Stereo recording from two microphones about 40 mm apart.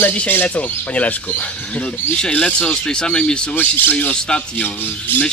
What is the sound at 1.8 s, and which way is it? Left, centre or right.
Speech, left.